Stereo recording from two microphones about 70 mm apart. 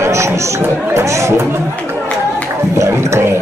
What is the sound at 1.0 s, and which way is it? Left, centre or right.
Speech, right.